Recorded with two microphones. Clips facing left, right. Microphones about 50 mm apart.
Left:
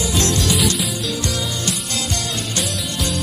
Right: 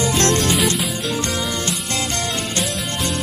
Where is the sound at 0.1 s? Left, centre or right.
Right.